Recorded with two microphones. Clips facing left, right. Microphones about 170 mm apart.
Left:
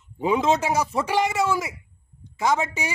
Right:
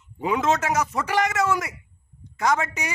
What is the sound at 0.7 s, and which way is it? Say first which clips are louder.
Speech: left 1 dB; 30° left (ahead or behind).